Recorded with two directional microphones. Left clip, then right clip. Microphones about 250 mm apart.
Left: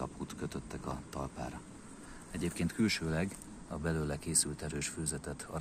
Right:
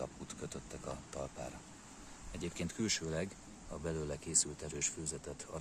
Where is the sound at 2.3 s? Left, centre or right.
Centre.